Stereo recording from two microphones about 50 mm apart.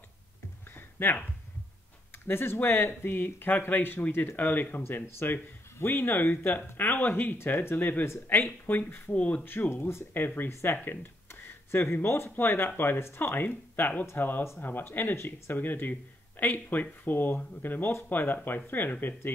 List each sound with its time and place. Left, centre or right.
0.7 s a sound: left
2.2 s speech: left
7.3 s speech: left
9.1 s speech: left
9.4 s speech: left
10.1 s speech: left
10.5 s speech: left
10.8 s speech: left
11.2 s a sound: left
12.3 s speech: left
15.5 s speech: left
17.0 s speech: left